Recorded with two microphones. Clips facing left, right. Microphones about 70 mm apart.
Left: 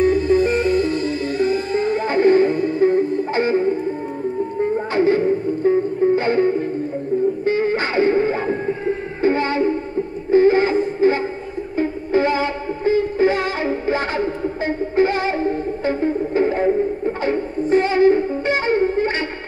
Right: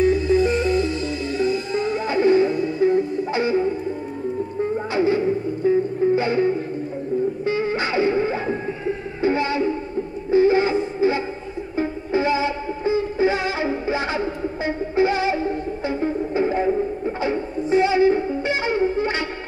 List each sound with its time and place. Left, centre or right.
0.0 s music: left
4.9 s music: left